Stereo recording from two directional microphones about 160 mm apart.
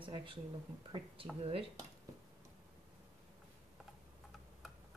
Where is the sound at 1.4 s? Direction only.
35° right (ahead or behind).